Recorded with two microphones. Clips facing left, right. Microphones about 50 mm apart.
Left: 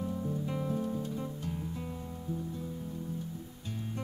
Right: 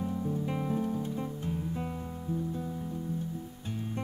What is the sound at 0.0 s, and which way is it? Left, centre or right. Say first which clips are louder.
Music: right 2 dB; right.